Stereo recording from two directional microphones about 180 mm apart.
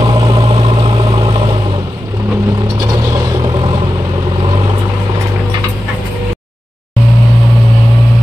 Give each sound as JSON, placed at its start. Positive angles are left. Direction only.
{"t": 0.0, "sound": "vehicle", "side_deg": -30}